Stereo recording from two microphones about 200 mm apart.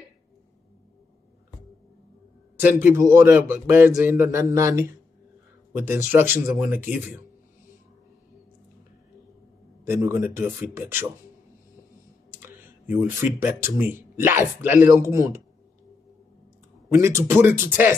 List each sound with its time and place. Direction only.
2.6 s speech: 10° right (ahead or behind)
9.8 s speech: 15° right (ahead or behind)
12.3 s speech: 10° right (ahead or behind)
16.9 s speech: 15° right (ahead or behind)